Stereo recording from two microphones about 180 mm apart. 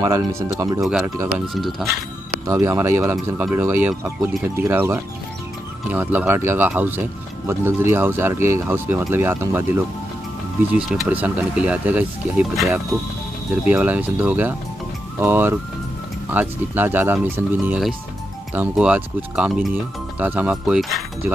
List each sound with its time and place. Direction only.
0.0 s speech: 15° right (ahead or behind)
0.8 s speech: 5° right (ahead or behind)
2.4 s speech: 20° right (ahead or behind)